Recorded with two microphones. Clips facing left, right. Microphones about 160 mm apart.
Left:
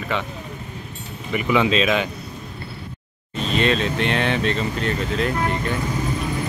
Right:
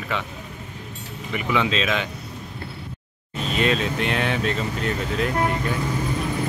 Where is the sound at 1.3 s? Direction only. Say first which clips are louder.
Left 4 dB; 10° left (ahead or behind).